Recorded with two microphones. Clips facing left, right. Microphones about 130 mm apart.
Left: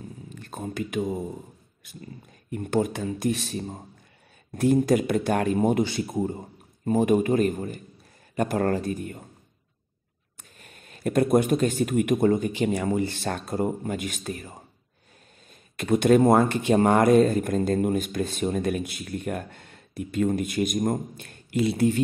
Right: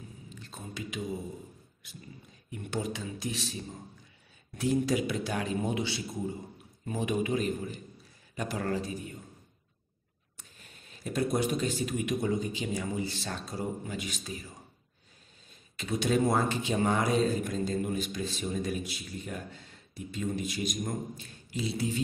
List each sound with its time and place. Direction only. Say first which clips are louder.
0.3 s a man's voice: left 10 dB; 55° left (ahead or behind)
10.6 s speech: left 12 dB; 60° left (ahead or behind)
15.7 s speech: left 10 dB; 55° left (ahead or behind)